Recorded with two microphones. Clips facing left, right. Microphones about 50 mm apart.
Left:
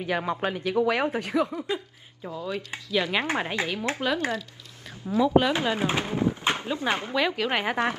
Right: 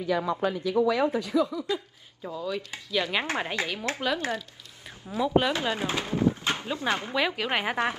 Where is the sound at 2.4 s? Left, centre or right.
Left.